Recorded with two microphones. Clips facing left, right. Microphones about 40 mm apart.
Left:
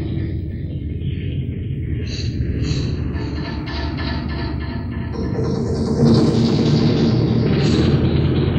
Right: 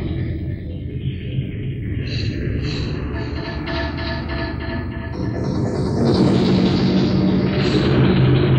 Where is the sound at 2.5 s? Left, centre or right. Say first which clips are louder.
Left 1 dB; centre.